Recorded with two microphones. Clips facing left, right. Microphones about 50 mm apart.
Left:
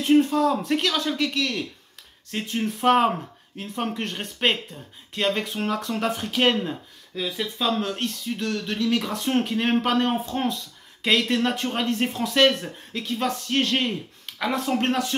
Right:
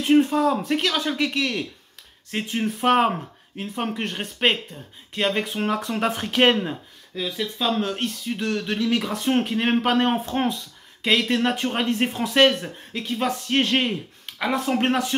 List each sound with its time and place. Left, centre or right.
0.0 s speech: right
0.7 s speech: centre
1.0 s speech: right
6.1 s speech: right
7.2 s speech: centre
7.6 s speech: centre
10.0 s speech: right
11.1 s speech: centre
14.2 s speech: centre